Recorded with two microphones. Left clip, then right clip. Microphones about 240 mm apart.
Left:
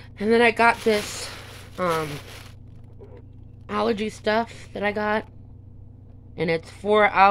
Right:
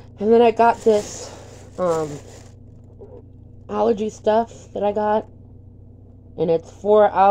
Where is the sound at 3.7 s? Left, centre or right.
Left.